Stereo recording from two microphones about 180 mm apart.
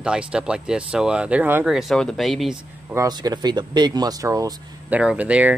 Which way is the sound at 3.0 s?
20° right (ahead or behind).